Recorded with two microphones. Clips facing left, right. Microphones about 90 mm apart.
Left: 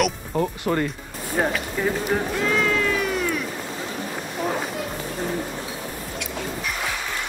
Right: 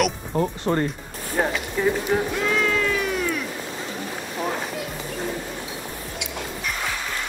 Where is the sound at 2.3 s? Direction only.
Centre (ahead or behind).